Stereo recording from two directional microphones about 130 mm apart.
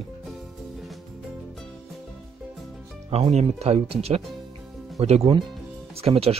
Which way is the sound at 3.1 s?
55° right (ahead or behind).